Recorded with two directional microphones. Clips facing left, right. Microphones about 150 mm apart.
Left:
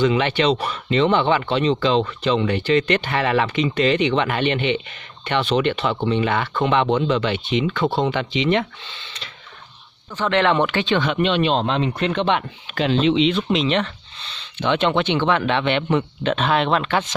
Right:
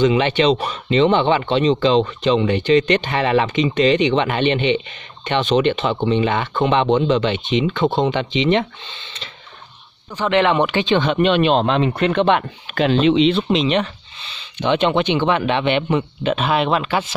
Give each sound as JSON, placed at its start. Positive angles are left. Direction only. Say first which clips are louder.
{"t": 0.0, "sound": "speech", "louder": "right 3 dB", "side_deg": -20}
{"t": 10.1, "sound": "a man's voice", "louder": "right 2 dB", "side_deg": -15}
{"t": 11.1, "sound": "speech", "louder": "right 4 dB", "side_deg": -55}
{"t": 13.2, "sound": "a man's voice", "louder": "right 3 dB", "side_deg": -30}